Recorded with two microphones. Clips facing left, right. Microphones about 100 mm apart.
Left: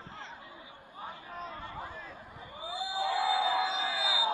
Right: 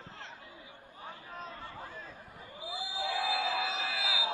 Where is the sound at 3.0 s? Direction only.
15° left (ahead or behind).